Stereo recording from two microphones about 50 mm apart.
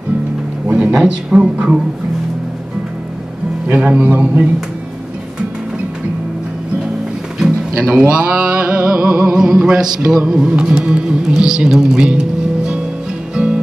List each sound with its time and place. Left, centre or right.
0.7 s a sound: right
0.9 s a man's voice: centre
3.7 s a man's voice: right
7.3 s a sound: centre
8.0 s a man's voice: right
13.3 s music: centre